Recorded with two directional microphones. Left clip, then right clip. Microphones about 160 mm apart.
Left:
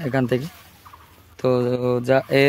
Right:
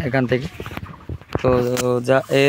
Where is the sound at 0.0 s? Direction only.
5° left (ahead or behind).